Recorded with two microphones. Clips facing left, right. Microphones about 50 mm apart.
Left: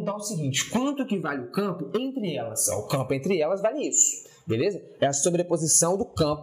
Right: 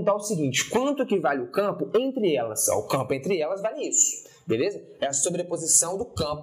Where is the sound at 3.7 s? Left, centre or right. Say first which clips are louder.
Left 2 dB; left.